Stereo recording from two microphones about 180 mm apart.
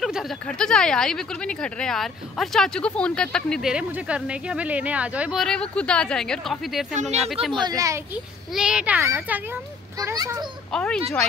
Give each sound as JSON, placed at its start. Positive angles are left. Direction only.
{"t": 0.0, "sound": "speech", "side_deg": 0}
{"t": 6.9, "sound": "speech", "side_deg": -40}
{"t": 7.6, "sound": "a child's voice", "side_deg": -20}
{"t": 8.5, "sound": "a child's voice", "side_deg": -5}
{"t": 10.7, "sound": "speech", "side_deg": 5}